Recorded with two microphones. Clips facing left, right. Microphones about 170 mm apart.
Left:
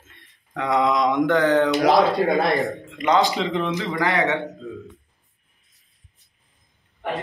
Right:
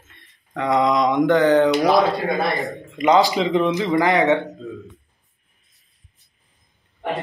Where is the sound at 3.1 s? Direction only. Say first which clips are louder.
Right 3 dB; 15° right (ahead or behind).